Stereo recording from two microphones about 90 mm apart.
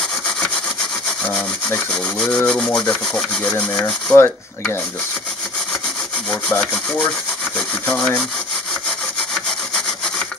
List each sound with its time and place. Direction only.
1.9 s rub: 10° left (ahead or behind)
6.5 s rub: 10° left (ahead or behind)
9.3 s sawing: 5° left (ahead or behind)